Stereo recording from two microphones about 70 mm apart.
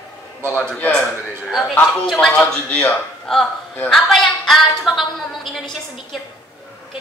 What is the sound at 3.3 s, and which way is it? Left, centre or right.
Speech, centre.